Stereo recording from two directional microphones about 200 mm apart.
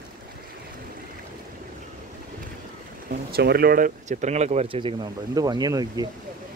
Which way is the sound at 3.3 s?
50° right (ahead or behind).